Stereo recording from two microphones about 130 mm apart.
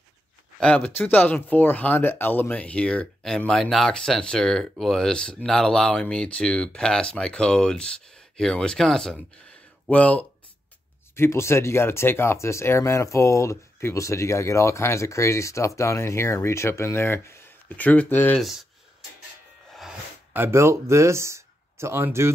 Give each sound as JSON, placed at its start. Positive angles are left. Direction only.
{"t": 0.6, "sound": "speech", "side_deg": 10}
{"t": 19.7, "sound": "a sound", "side_deg": 0}
{"t": 20.3, "sound": "speech", "side_deg": -20}